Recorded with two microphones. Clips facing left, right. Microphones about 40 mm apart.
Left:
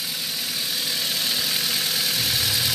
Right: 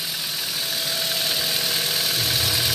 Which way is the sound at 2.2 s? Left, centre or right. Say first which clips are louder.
Right 1 dB; right.